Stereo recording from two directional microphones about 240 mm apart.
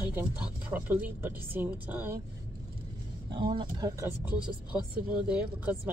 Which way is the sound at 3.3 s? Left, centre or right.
Centre.